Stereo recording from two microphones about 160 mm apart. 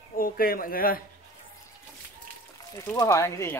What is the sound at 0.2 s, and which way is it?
Speech, 65° left (ahead or behind).